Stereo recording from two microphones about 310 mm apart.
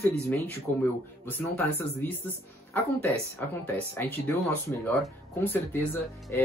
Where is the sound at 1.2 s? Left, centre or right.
Centre.